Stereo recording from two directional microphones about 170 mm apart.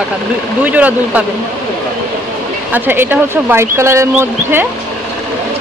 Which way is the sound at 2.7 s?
10° right (ahead or behind).